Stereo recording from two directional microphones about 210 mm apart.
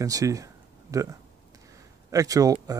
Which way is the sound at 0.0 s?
15° right (ahead or behind).